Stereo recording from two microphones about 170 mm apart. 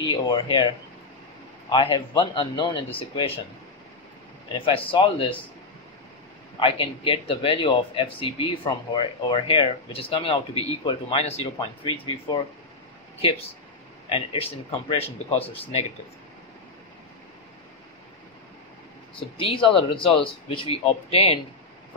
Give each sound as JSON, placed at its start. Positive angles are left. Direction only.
{"t": 0.0, "sound": "speech", "side_deg": 25}
{"t": 4.5, "sound": "speech", "side_deg": 30}
{"t": 6.6, "sound": "speech", "side_deg": 30}
{"t": 11.5, "sound": "speech", "side_deg": 25}
{"t": 14.0, "sound": "speech", "side_deg": 30}
{"t": 19.1, "sound": "speech", "side_deg": 30}